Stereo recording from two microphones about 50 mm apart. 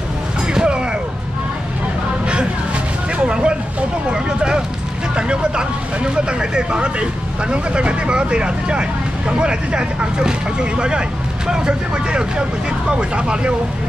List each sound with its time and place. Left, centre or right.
0.6 s a sound: centre
3.3 s vehicle: centre
5.1 s speech: centre